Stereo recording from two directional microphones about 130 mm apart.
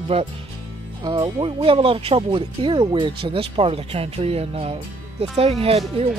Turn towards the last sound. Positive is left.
turn(degrees=-50)  # may be behind; listen again after turning